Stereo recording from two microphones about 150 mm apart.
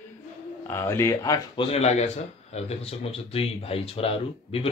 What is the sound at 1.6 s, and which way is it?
Speech, 45° left (ahead or behind).